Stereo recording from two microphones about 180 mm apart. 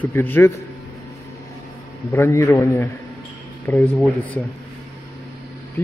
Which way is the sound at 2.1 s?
15° left (ahead or behind).